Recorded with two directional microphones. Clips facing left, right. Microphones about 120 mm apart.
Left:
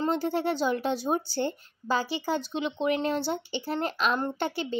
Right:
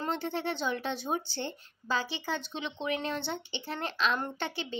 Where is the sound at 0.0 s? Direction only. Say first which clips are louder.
Left 6 dB; 35° left (ahead or behind).